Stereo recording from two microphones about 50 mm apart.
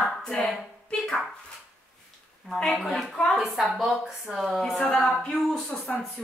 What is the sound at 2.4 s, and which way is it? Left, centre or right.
Speech, centre.